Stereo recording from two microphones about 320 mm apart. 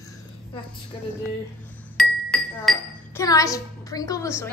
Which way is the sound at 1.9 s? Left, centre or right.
Centre.